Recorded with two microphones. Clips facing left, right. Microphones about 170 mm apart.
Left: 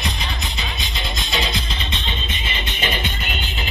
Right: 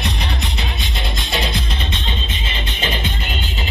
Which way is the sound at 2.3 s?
30° right (ahead or behind).